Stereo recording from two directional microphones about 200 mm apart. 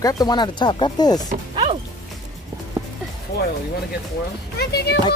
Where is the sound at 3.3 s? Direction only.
55° left (ahead or behind).